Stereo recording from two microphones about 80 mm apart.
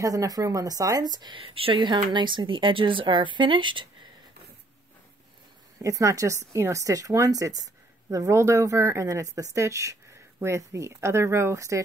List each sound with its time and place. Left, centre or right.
0.0 s speech: right
2.1 s speech: right
5.8 s speech: right